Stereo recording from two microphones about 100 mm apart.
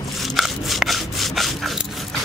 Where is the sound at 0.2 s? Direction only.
Centre (ahead or behind).